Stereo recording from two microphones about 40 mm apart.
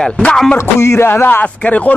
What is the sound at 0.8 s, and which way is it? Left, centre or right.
Speech, left.